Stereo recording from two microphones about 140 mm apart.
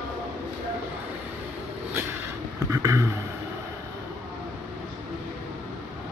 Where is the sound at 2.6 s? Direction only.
25° right (ahead or behind).